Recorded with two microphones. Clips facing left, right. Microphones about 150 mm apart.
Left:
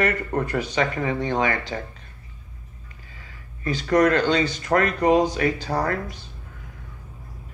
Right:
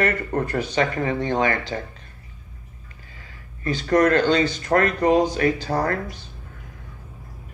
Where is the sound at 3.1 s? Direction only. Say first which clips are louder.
Right 1 dB; 35° right (ahead or behind).